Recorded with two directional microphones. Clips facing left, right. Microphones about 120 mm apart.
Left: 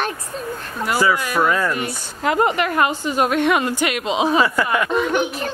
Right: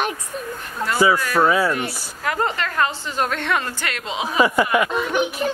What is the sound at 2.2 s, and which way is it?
A woman's voice, 20° left (ahead or behind).